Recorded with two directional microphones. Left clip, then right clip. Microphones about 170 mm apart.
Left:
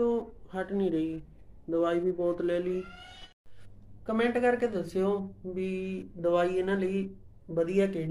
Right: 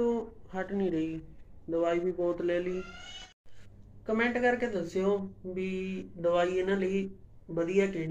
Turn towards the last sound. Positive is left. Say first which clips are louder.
# left 1 dB
turn(degrees=15)  # may be behind; listen again after turning